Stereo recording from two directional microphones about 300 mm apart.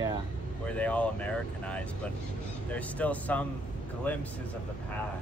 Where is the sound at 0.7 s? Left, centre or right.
Centre.